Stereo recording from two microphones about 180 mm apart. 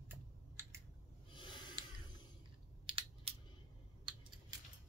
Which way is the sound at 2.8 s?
30° right (ahead or behind).